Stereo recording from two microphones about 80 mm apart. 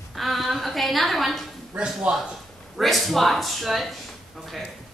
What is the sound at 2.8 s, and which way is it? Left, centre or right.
A woman's voice, centre.